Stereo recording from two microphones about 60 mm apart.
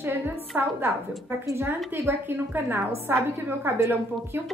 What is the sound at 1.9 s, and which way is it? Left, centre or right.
A woman's voice, right.